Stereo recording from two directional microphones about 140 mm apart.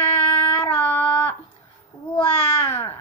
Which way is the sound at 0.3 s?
10° left (ahead or behind).